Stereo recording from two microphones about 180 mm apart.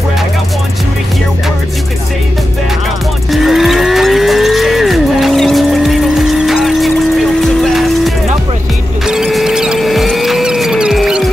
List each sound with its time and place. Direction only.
3.3 s moo: centre (ahead or behind)
7.6 s music: centre (ahead or behind)
9.0 s a sound: centre (ahead or behind)